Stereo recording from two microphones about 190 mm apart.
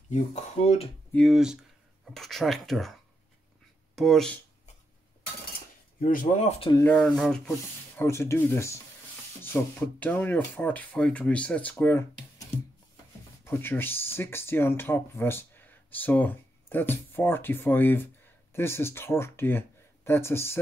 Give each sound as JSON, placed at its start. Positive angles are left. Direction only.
{"t": 0.1, "sound": "speech", "side_deg": 35}
{"t": 1.1, "sound": "speech", "side_deg": 0}
{"t": 5.9, "sound": "speech", "side_deg": 45}
{"t": 6.7, "sound": "speech", "side_deg": 10}
{"t": 7.0, "sound": "speech", "side_deg": 0}
{"t": 8.0, "sound": "speech", "side_deg": 15}